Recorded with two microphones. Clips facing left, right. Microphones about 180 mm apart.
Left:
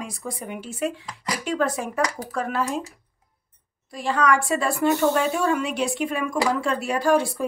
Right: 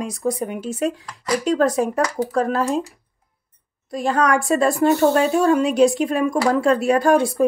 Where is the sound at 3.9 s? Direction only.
45° right (ahead or behind).